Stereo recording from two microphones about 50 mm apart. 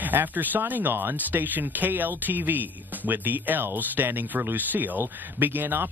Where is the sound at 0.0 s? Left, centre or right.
Right.